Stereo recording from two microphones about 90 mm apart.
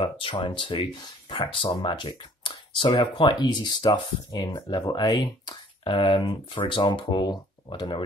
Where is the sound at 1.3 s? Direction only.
85° left; by 2.9 s 65° left (ahead or behind).